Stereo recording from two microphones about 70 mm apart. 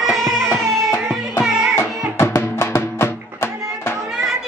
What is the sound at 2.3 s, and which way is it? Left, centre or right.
Music, left.